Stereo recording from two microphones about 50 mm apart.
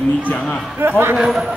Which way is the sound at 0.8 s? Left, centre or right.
Right.